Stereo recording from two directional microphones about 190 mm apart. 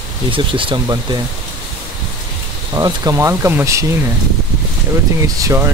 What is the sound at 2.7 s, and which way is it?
Speech, 20° right (ahead or behind).